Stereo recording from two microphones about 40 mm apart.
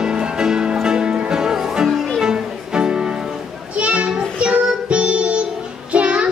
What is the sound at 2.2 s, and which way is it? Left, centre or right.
Music, centre.